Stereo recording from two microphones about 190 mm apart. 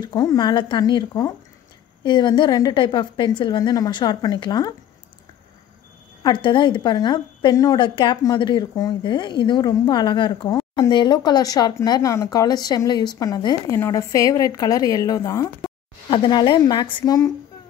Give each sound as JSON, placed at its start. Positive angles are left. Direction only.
{"t": 0.0, "sound": "speech", "side_deg": 20}
{"t": 6.2, "sound": "speech", "side_deg": 25}